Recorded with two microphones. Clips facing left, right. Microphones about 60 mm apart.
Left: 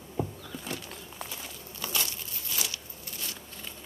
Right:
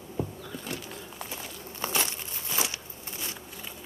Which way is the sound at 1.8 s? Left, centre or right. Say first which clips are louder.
Right 4 dB; right.